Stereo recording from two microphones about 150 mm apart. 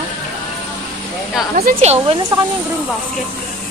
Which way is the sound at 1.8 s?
45° right (ahead or behind).